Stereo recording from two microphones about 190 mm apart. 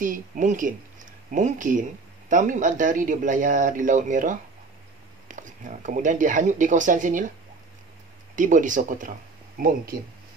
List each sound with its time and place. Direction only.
0.0 s speech: 45° right (ahead or behind)
8.4 s speech: 40° right (ahead or behind)